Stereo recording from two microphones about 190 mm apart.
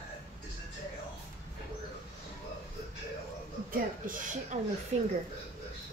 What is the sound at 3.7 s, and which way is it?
Speech, 45° right (ahead or behind).